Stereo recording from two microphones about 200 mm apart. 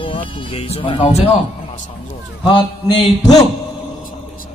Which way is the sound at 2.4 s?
25° left (ahead or behind).